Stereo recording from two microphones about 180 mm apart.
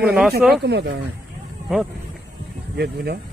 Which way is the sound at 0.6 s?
70° right (ahead or behind).